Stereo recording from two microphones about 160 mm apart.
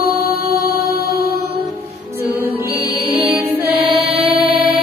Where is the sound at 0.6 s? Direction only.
80° left.